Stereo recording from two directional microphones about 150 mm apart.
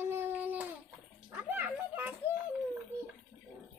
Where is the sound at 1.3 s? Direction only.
10° right (ahead or behind).